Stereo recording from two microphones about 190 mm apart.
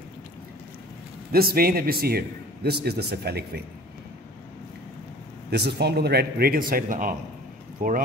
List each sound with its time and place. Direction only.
1.3 s a man's voice: 55° right (ahead or behind)
5.5 s a man's voice: 60° right (ahead or behind)